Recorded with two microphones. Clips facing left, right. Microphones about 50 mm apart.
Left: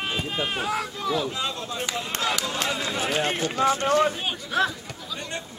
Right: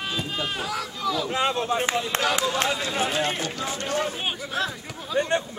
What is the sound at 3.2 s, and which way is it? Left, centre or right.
Speech, left.